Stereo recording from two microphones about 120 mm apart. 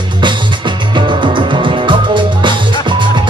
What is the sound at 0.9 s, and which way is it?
Music, 45° right (ahead or behind).